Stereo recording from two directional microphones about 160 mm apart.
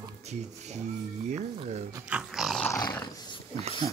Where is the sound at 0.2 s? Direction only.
45° right (ahead or behind).